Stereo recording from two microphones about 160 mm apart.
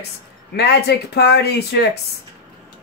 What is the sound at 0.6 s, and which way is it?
Speech, 90° left.